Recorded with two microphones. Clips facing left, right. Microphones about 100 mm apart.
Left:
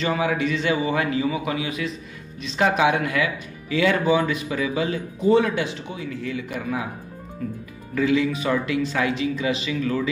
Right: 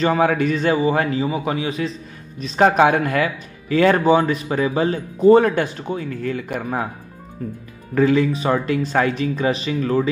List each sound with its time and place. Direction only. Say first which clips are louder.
0.0 s a man's voice: right 5 dB; 45° right (ahead or behind)
7.4 s speech: right 1 dB; 35° right (ahead or behind)